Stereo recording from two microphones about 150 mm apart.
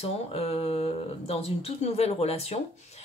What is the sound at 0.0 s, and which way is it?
Speech, 40° left (ahead or behind).